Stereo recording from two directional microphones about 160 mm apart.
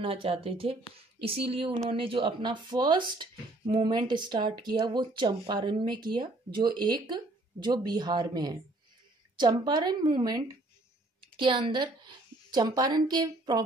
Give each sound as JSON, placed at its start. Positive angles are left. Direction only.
{"t": 0.0, "sound": "a woman's voice", "side_deg": -35}